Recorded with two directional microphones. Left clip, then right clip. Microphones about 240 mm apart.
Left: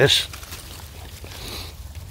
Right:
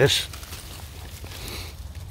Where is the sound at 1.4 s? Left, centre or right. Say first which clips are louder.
Left 3 dB; centre.